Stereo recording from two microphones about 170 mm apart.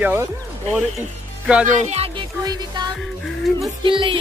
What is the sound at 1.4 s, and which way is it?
Speech, 5° right (ahead or behind).